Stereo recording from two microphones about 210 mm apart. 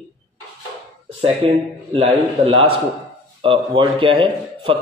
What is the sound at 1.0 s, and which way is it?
A man's voice, 25° right (ahead or behind).